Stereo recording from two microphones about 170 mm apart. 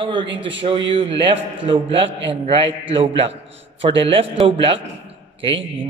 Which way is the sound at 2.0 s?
90° right.